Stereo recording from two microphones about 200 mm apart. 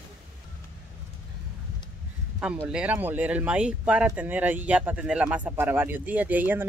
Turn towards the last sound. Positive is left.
turn(degrees=-10)  # may be behind; listen again after turning